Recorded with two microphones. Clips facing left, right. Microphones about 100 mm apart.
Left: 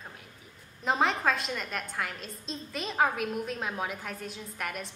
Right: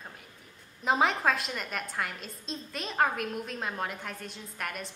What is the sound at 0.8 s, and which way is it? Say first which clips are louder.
A woman's voice: right 1 dB; centre (ahead or behind).